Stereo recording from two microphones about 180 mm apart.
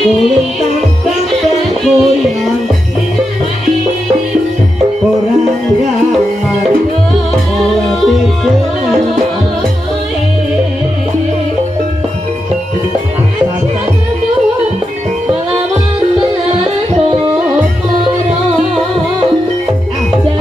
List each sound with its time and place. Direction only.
0.0 s music: centre (ahead or behind)
1.9 s music: centre (ahead or behind)
16.5 s music: 35° right (ahead or behind)